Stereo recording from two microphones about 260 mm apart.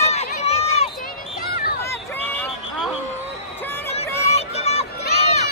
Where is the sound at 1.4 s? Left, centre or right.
Left.